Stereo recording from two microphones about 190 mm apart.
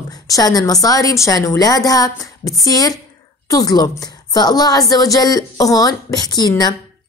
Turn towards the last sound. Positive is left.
turn(degrees=20)  # may be behind; listen again after turning